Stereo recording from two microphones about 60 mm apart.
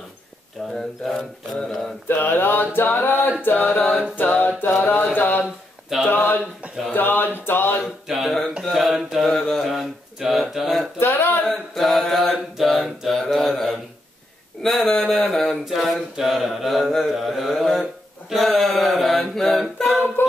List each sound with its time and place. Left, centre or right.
0.7 s mantra: centre
2.0 s a sound: left
3.4 s mantra: left
4.2 s a capella: left
4.6 s mantra: left
6.0 s a sound: left
7.8 s a sound: centre
8.6 s mantra: centre
11.0 s a sound: left
11.4 s mantra: centre
15.6 s mantra: centre
20.2 s music: left